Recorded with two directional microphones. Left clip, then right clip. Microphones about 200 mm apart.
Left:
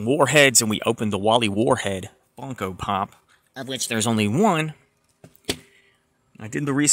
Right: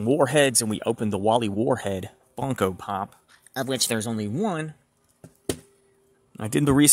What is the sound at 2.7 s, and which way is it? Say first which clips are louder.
Speech: left 5 dB; 5° left (ahead or behind).